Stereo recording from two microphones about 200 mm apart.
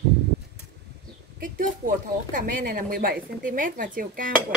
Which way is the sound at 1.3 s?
45° right (ahead or behind).